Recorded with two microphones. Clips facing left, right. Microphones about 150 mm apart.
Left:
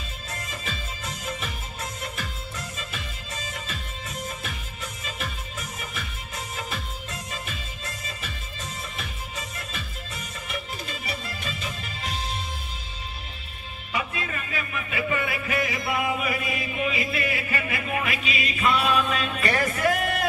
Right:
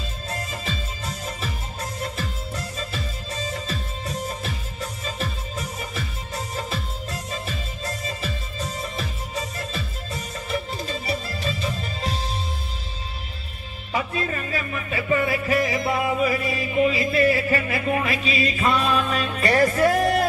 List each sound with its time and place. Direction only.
0.5 s music: 35° right (ahead or behind)
13.9 s music: 35° right (ahead or behind)